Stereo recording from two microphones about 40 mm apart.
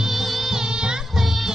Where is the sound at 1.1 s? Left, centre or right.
Centre.